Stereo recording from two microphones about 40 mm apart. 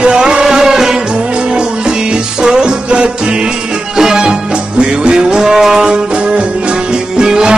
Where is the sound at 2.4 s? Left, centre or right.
Right.